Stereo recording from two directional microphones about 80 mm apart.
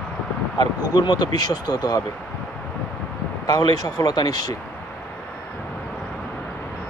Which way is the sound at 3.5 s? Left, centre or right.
Left.